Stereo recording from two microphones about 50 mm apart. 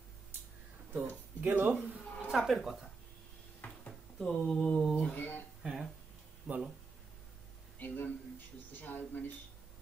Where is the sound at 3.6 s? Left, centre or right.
Left.